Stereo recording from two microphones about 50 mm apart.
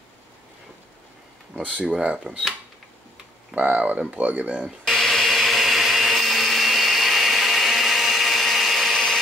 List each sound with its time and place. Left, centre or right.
1.5 s speech: right
3.5 s speech: right
4.8 s blender: centre